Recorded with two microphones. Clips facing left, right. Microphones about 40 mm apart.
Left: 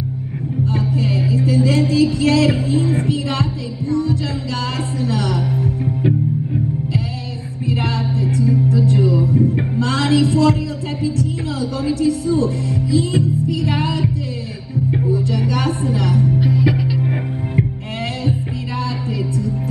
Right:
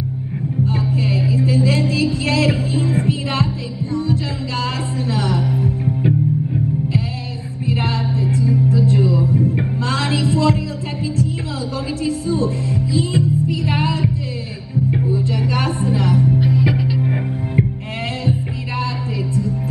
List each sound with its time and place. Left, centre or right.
0.7 s music: right
3.9 s heart sounds: right
5.0 s music: right
5.9 s music: centre
7.6 s music: right
9.8 s a sound: right
11.9 s music: right
15.0 s music: right
15.3 s a sound: right
16.3 s music: centre